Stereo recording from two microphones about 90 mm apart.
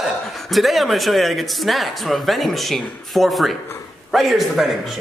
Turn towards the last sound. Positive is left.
turn(degrees=0)  # may be behind; listen again after turning